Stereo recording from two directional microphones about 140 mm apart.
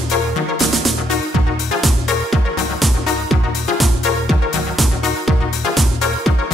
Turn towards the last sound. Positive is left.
turn(degrees=0)  # may be behind; listen again after turning